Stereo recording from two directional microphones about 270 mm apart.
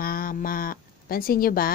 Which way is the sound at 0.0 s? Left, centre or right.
Left.